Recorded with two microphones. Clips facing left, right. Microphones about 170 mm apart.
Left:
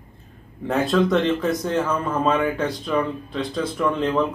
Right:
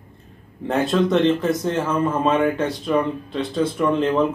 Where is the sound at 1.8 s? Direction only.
25° right (ahead or behind).